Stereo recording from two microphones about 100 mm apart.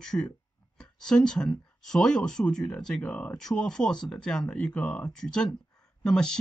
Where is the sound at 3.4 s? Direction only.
5° left (ahead or behind).